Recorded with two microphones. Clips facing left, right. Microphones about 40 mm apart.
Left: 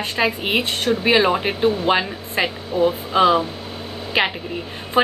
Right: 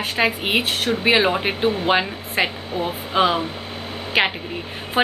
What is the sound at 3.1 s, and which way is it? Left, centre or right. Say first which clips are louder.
A woman's voice: even; centre.